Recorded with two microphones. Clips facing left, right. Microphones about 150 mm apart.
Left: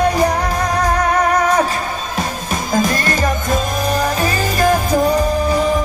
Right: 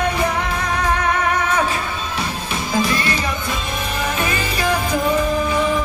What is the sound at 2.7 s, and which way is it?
Music, 45° left (ahead or behind).